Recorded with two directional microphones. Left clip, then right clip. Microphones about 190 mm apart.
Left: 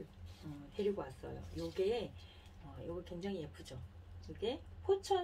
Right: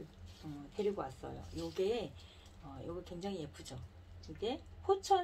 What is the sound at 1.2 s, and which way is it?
A woman's voice, 30° right (ahead or behind).